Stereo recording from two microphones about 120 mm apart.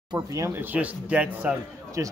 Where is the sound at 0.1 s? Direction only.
25° right (ahead or behind); by 1.5 s 10° right (ahead or behind).